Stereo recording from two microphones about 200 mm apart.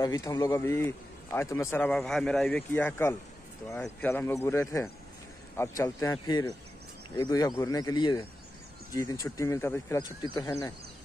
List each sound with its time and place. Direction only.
0.0 s speech: 20° left (ahead or behind)